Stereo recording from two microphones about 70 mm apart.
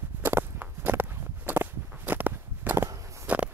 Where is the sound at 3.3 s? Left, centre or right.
Centre.